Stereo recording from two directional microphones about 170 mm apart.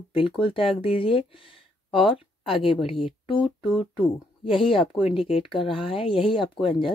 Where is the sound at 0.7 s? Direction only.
30° left (ahead or behind).